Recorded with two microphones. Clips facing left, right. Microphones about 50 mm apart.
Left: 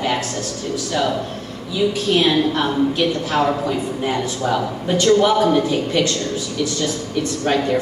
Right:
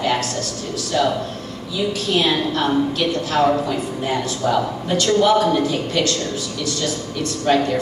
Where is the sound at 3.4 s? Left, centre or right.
Centre.